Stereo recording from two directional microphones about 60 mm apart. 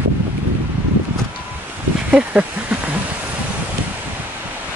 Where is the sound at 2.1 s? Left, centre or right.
Right.